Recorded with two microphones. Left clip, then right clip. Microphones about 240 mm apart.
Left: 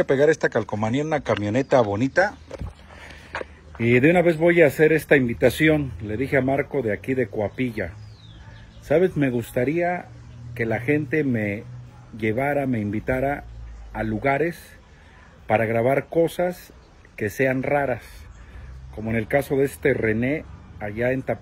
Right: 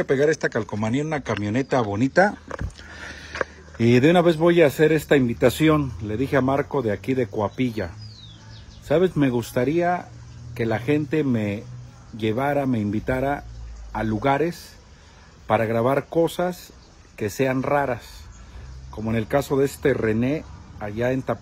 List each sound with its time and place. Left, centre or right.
0.0 s speech: centre
3.8 s speech: right